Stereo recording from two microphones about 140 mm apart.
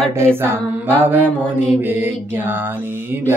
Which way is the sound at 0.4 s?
15° right (ahead or behind).